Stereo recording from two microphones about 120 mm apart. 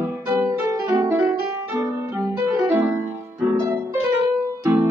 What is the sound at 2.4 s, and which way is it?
Music, 20° right (ahead or behind).